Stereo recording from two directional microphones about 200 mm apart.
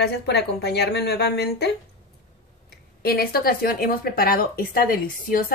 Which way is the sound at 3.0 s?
50° left (ahead or behind).